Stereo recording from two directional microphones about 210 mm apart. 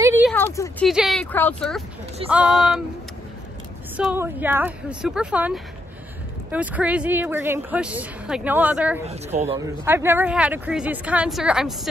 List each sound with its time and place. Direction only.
0.0 s a sound: 10° right (ahead or behind)
0.3 s speech: 10° left (ahead or behind)
0.8 s speech: centre (ahead or behind)
3.9 s a woman's voice: 10° right (ahead or behind)
9.0 s speech: 30° right (ahead or behind)
9.6 s a woman's voice: 10° right (ahead or behind)